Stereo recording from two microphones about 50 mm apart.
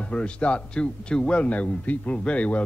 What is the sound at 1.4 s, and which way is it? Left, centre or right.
Speech, left.